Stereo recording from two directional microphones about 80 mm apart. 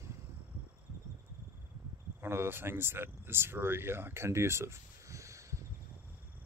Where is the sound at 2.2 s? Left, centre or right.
Right.